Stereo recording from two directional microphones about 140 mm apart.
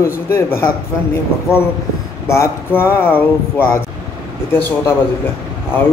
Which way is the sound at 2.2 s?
20° left (ahead or behind).